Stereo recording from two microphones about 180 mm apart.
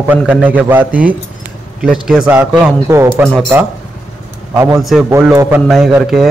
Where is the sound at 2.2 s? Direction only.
15° right (ahead or behind).